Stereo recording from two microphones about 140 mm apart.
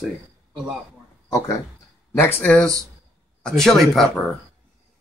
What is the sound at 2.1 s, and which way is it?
Speech, 15° left (ahead or behind).